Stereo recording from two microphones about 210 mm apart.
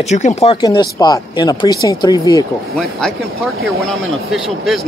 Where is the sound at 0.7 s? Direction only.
20° left (ahead or behind).